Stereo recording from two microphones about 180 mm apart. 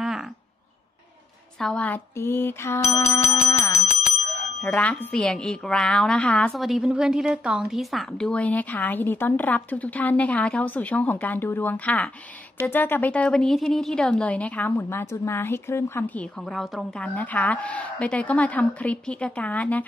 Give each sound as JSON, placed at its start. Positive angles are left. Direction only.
{"t": 0.0, "sound": "a sound", "side_deg": -5}
{"t": 1.6, "sound": "a woman's voice", "side_deg": 5}
{"t": 4.6, "sound": "a woman's voice", "side_deg": 5}